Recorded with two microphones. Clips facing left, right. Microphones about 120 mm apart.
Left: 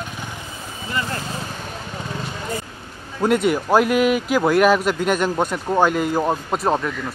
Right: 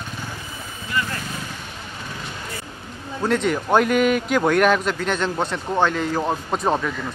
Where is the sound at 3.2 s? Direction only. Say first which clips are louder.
Left 3 dB; 10° left (ahead or behind).